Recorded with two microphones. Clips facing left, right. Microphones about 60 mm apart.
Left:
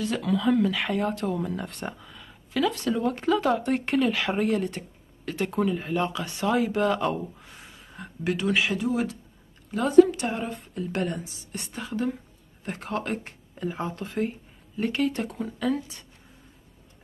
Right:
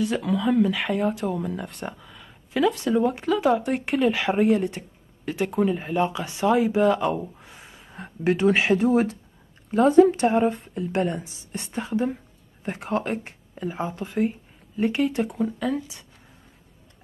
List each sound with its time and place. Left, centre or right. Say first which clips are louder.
0.0 s speech: right 2 dB; centre
2.5 s speech: right 4 dB; centre
7.6 s speech: right 2 dB; centre
11.9 s speech: right 3 dB; centre
14.8 s speech: right 3 dB; centre